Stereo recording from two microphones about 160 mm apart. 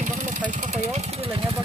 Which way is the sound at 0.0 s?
50° right (ahead or behind).